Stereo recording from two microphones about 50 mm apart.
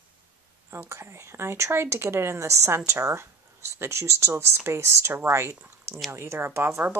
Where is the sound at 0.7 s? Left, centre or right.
Right.